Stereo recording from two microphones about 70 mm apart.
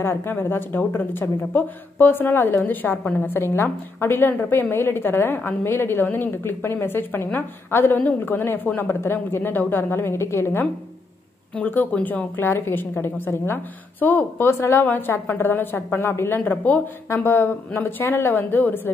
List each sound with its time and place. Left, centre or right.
0.0 s speech: left
11.5 s speech: left